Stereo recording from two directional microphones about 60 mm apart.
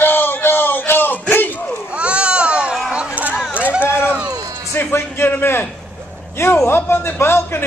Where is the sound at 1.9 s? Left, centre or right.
Centre.